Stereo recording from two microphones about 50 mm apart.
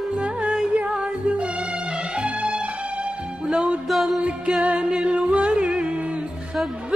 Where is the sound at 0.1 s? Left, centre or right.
Right.